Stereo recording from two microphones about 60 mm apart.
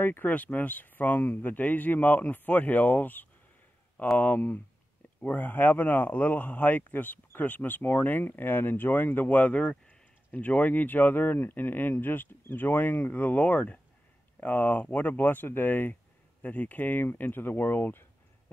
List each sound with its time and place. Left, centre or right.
0.0 s speech: left